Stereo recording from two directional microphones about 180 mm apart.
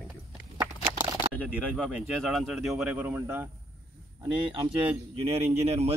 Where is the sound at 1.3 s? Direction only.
5° left (ahead or behind).